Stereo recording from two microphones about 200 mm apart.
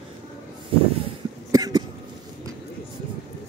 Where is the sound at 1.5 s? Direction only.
20° right (ahead or behind).